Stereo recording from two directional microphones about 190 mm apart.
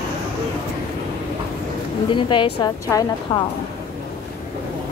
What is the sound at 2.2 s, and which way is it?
A woman's voice, 25° left (ahead or behind).